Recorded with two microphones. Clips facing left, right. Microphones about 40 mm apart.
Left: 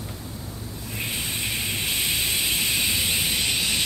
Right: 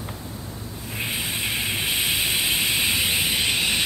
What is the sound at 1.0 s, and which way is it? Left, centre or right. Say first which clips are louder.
Hiss: right 2 dB; centre.